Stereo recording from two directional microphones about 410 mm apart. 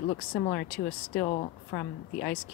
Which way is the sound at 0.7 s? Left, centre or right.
Centre.